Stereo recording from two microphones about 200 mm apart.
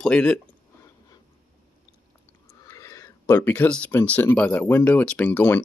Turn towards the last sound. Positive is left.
turn(degrees=10)  # may be behind; listen again after turning